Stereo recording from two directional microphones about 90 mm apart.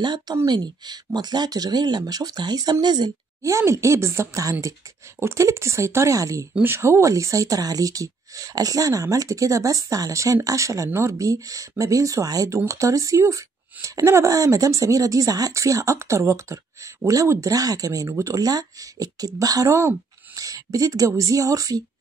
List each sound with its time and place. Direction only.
0.0 s speech: 55° right (ahead or behind)
3.4 s speech: 35° right (ahead or behind)